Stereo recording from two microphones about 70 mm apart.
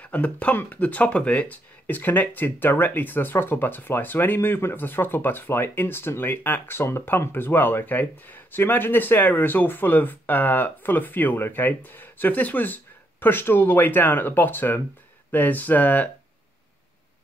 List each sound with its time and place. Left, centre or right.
0.0 s speech: left